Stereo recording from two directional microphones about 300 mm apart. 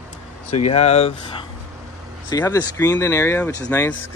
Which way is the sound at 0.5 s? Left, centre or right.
Left.